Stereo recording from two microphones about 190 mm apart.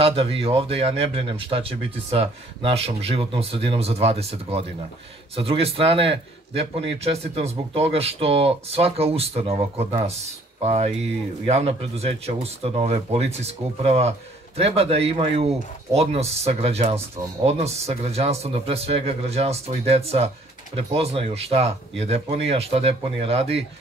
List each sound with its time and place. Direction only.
0.0 s speech: 30° right (ahead or behind)